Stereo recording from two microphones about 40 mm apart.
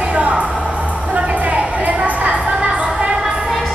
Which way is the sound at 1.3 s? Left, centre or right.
Right.